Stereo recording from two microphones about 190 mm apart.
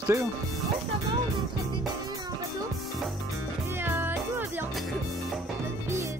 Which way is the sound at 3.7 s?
10° right (ahead or behind).